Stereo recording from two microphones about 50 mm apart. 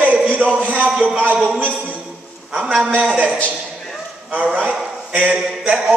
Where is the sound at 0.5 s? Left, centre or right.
Right.